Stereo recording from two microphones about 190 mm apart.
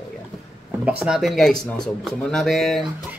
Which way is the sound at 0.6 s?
5° right (ahead or behind).